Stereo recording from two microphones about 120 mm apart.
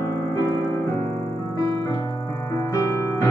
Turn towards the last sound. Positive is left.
turn(degrees=25)  # may be behind; listen again after turning